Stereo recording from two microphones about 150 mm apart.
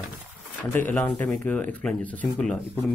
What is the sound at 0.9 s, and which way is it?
Speech, 5° left (ahead or behind).